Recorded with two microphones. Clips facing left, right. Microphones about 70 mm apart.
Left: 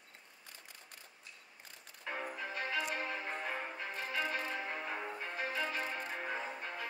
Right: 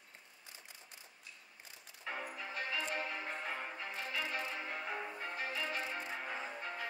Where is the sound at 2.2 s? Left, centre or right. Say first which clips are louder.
Left 2 dB; left.